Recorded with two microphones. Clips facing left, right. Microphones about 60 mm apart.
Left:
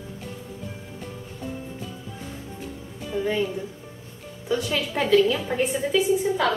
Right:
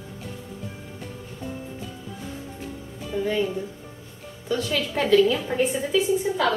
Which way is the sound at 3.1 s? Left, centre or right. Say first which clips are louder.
Even; centre.